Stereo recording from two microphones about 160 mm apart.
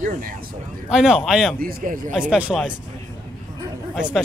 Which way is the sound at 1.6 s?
60° right (ahead or behind).